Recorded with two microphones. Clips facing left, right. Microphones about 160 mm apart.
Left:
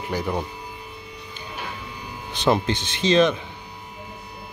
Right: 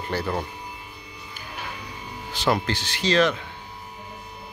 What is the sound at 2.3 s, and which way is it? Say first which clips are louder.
Speech: left 3 dB; 20° left (ahead or behind).